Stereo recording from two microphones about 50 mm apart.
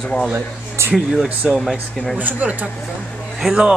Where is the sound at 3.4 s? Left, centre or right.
Centre.